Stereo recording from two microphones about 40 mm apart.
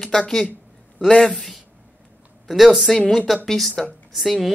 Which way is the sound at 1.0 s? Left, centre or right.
Centre.